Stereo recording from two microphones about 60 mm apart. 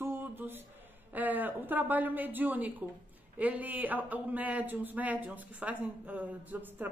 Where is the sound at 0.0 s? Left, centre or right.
Right.